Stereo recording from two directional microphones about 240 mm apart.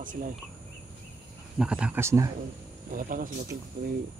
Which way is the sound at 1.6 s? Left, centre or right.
Centre.